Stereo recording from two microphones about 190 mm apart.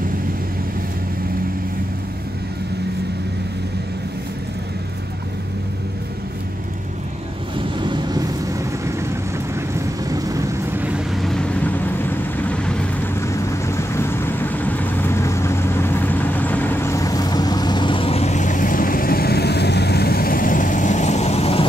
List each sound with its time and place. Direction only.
7.8 s vehicle: 20° right (ahead or behind); by 21.6 s 30° left (ahead or behind)